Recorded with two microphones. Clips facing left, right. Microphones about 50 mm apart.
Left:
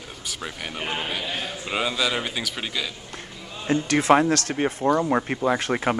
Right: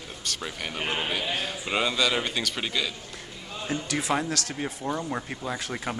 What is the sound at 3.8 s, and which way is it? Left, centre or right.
Speech, left.